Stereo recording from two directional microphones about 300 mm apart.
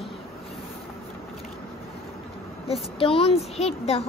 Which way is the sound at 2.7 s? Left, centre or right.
Centre.